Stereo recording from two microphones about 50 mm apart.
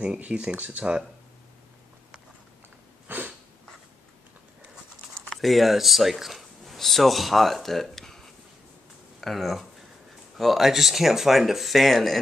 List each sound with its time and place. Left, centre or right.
0.0 s speech: right
3.1 s a sound: right
5.3 s speech: centre
9.2 s speech: centre